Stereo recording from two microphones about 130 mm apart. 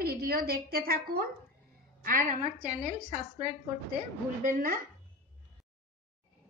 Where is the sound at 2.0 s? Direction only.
90° right.